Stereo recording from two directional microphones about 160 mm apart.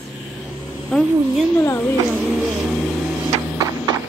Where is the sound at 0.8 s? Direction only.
5° left (ahead or behind).